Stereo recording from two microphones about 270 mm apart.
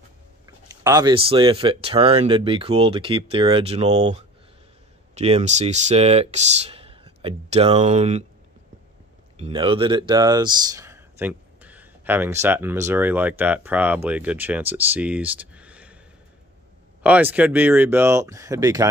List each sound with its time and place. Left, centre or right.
0.8 s speech: centre
9.4 s speech: centre
17.0 s speech: centre